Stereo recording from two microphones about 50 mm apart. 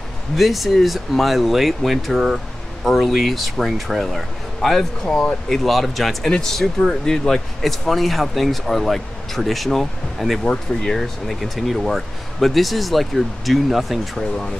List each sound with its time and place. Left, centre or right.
0.4 s speech: centre